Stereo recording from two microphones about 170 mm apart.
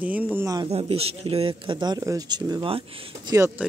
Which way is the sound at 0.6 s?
35° right (ahead or behind).